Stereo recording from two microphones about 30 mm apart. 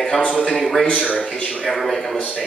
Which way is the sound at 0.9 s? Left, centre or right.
Right.